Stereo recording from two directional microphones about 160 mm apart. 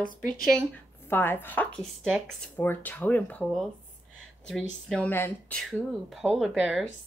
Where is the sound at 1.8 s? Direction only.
Centre (ahead or behind).